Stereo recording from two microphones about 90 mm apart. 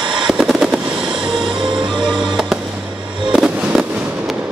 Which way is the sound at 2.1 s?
60° right (ahead or behind).